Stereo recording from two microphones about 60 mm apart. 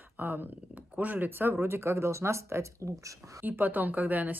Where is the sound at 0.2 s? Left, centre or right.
Right.